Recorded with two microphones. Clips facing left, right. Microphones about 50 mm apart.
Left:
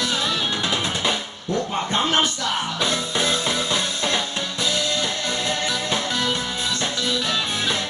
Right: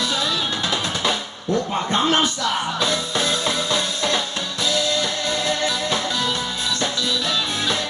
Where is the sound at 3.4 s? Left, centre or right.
Centre.